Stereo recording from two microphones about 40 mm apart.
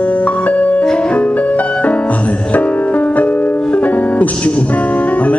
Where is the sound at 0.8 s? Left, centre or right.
Left.